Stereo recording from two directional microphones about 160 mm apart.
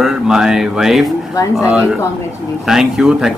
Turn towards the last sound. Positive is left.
turn(degrees=-5)  # may be behind; listen again after turning